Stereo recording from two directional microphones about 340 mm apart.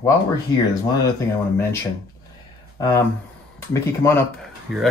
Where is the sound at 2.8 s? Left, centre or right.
Centre.